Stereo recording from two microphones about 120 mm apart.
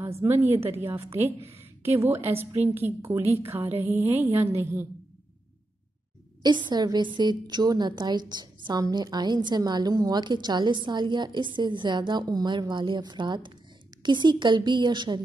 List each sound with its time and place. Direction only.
0.3 s a woman's voice: 20° right (ahead or behind)
1.4 s speech: 60° right (ahead or behind)
2.0 s a woman's voice: 20° right (ahead or behind)
2.2 s a woman's voice: 60° right (ahead or behind)
2.7 s a woman's voice: 20° right (ahead or behind)
3.4 s a sound: 15° right (ahead or behind)
6.4 s a woman's voice: 40° right (ahead or behind)